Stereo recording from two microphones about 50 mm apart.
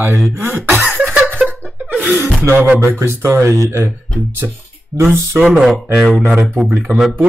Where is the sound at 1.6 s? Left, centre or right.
Right.